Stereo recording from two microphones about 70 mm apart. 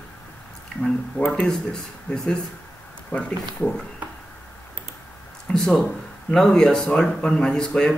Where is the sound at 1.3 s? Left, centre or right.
Centre.